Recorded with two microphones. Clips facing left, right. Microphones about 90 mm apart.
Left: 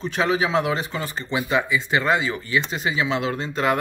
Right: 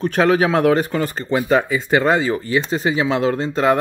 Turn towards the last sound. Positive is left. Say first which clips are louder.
# right 5 dB
turn(degrees=-30)  # may be behind; listen again after turning